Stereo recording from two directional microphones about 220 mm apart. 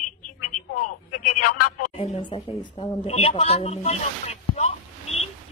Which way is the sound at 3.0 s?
25° left (ahead or behind).